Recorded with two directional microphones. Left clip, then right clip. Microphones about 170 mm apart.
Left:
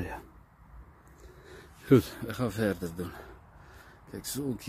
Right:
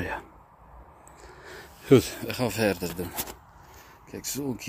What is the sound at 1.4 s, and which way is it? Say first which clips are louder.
Speech: right 4 dB; 5° left (ahead or behind).